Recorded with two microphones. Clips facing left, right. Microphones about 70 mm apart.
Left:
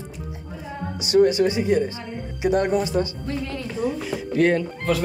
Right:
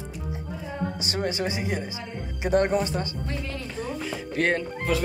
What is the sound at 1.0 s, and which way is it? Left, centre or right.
Speech, right.